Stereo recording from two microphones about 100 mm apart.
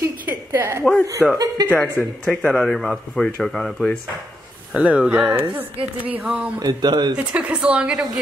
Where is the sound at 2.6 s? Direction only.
5° left (ahead or behind).